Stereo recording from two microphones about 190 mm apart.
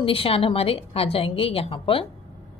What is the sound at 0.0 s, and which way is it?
A woman's voice, 30° left (ahead or behind).